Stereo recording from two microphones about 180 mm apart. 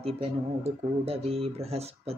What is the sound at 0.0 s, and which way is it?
Speech, 35° right (ahead or behind).